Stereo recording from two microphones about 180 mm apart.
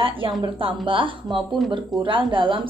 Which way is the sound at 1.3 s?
Centre (ahead or behind).